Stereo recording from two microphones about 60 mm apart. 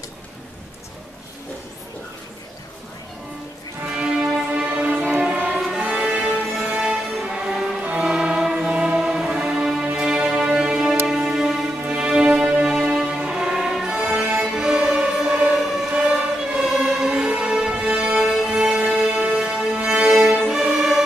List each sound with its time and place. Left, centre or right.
3.9 s music: centre
15.5 s a sound: centre
16.0 s music: centre